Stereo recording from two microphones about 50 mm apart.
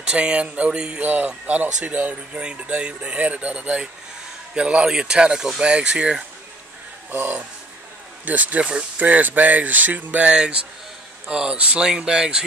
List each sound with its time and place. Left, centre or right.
0.0 s speech: right
1.0 s speech: right
2.4 s speech: right
7.1 s speech: right
8.3 s speech: right; by 12.4 s centre